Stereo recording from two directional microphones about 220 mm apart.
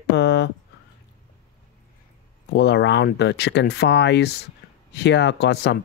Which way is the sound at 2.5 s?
50° left (ahead or behind).